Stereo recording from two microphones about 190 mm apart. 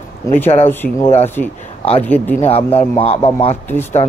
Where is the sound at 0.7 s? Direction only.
10° left (ahead or behind).